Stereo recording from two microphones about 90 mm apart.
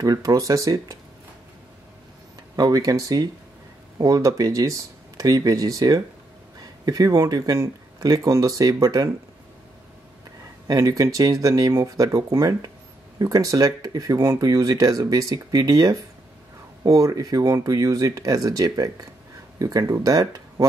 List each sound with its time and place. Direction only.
0.0 s speech: 40° right (ahead or behind)
2.5 s speech: 45° right (ahead or behind)
10.7 s speech: 45° right (ahead or behind)